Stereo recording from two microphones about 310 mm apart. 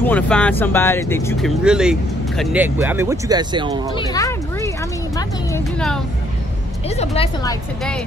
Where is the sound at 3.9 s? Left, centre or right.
Centre.